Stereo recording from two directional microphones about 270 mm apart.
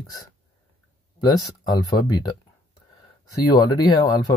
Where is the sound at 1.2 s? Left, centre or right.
Centre.